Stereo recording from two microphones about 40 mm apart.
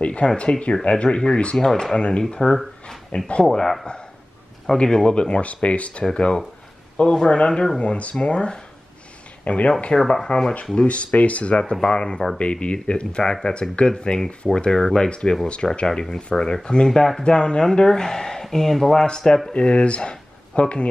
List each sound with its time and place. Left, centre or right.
0.0 s a sound: left
0.4 s speech: left
1.6 s speech: centre
2.0 s speech: left
4.7 s speech: left
9.4 s speech: left
9.9 s speech: centre
10.9 s speech: left
11.6 s speech: centre
19.6 s speech: left